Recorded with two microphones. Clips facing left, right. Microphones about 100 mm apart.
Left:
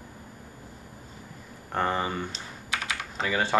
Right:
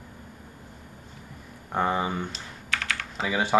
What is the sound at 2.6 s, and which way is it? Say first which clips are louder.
Typing: right 1 dB; 15° left (ahead or behind).